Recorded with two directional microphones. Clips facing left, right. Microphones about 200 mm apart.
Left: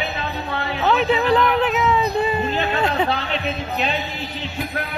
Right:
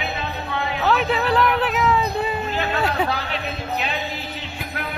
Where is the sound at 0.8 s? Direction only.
Centre (ahead or behind).